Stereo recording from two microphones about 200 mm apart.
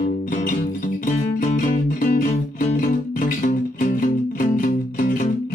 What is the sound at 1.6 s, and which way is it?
Music, 45° left (ahead or behind).